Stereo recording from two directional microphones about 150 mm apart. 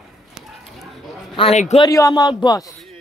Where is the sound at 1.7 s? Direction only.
25° left (ahead or behind).